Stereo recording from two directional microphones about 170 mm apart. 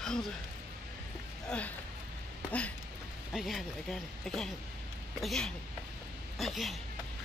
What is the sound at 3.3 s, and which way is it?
Speech, centre (ahead or behind).